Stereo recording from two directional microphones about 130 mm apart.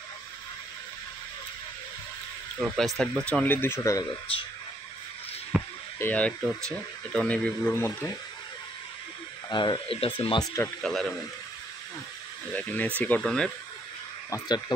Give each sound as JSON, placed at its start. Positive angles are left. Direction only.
{"t": 2.6, "sound": "speech", "side_deg": 0}
{"t": 4.3, "sound": "speech", "side_deg": 45}
{"t": 5.5, "sound": "rowboat", "side_deg": -10}
{"t": 5.9, "sound": "speech", "side_deg": 15}
{"t": 9.5, "sound": "speech", "side_deg": 35}
{"t": 10.8, "sound": "speech", "side_deg": 0}
{"t": 12.5, "sound": "speech", "side_deg": 10}